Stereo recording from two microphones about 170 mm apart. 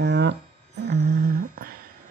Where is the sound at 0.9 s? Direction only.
65° right (ahead or behind).